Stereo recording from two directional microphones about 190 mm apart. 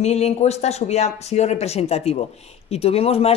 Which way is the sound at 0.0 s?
35° left (ahead or behind).